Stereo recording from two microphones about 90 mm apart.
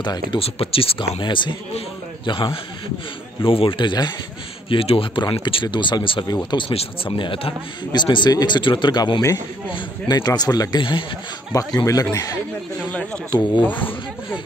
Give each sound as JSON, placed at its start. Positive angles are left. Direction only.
{"t": 0.0, "sound": "speech", "side_deg": 55}
{"t": 0.4, "sound": "speech", "side_deg": 90}
{"t": 1.2, "sound": "speech", "side_deg": 60}
{"t": 3.4, "sound": "speech", "side_deg": 80}
{"t": 4.6, "sound": "speech", "side_deg": 90}
{"t": 10.8, "sound": "speech", "side_deg": 65}
{"t": 11.5, "sound": "speech", "side_deg": 40}
{"t": 13.6, "sound": "speech", "side_deg": 20}